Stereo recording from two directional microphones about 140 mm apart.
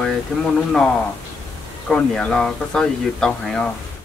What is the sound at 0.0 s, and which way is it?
A woman's voice, 5° left (ahead or behind).